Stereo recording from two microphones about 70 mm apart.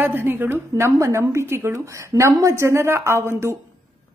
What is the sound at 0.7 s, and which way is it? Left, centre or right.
A woman's voice, right.